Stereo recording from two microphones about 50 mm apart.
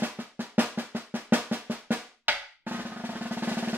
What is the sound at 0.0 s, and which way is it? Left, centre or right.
Drum roll, right.